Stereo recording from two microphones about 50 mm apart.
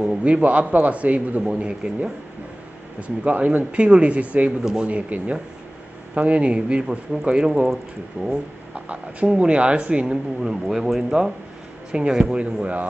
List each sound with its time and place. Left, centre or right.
0.0 s speech: right
1.4 s speech: centre
8.2 s speech: right
10.0 s speech: centre
11.9 s speech: right